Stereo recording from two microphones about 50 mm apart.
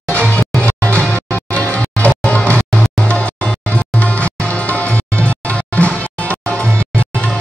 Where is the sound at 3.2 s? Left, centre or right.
Left.